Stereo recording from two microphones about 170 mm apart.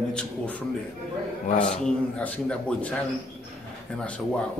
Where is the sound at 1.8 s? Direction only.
10° left (ahead or behind).